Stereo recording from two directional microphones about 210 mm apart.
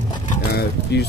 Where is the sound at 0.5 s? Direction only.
50° left (ahead or behind).